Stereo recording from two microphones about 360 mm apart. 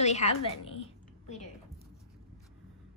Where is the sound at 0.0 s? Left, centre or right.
Centre.